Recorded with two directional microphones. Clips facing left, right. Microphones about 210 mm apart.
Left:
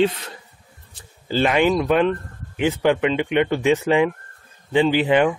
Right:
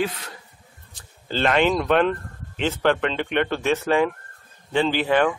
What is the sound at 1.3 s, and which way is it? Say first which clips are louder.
Speech: left 2 dB; 10° left (ahead or behind).